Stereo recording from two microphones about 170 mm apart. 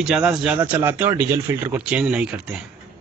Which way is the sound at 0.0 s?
5° right (ahead or behind).